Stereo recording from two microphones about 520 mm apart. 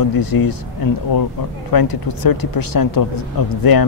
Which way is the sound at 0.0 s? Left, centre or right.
Left.